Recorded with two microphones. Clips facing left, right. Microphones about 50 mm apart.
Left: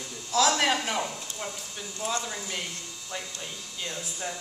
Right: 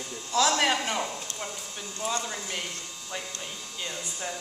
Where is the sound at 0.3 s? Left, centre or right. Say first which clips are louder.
Even; centre.